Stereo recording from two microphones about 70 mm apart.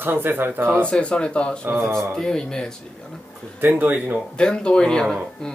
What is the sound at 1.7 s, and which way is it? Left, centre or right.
Speech, right.